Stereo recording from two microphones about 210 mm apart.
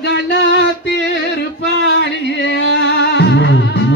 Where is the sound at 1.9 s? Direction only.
55° left (ahead or behind).